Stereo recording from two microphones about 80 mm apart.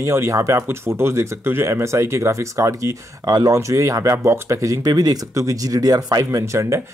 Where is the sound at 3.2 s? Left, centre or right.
Right.